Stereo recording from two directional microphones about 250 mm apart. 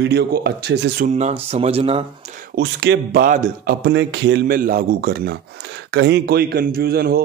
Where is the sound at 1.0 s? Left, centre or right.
Right.